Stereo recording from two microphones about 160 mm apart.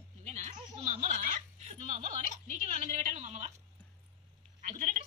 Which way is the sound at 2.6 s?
40° right (ahead or behind).